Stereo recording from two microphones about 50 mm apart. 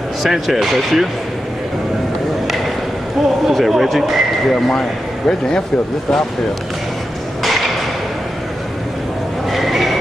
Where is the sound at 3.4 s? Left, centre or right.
Centre.